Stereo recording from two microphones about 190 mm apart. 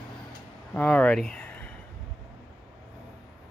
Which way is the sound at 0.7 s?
5° left (ahead or behind).